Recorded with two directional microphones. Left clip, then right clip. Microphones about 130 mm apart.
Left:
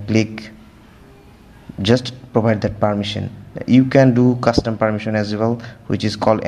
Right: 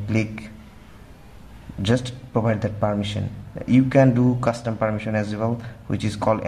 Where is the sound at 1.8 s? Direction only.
25° left (ahead or behind).